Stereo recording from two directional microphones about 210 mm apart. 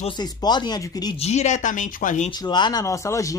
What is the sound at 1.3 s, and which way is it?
Speech, 35° left (ahead or behind).